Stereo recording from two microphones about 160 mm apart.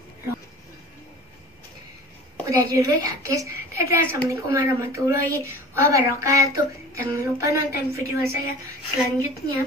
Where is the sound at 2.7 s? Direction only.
20° right (ahead or behind).